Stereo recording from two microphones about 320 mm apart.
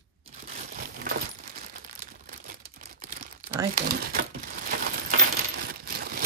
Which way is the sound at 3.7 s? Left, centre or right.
Right.